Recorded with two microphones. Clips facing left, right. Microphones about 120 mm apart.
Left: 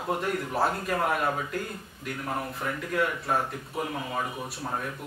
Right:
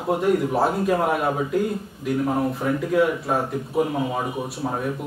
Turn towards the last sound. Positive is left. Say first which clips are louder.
# right 7 dB
turn(degrees=-15)  # may be behind; listen again after turning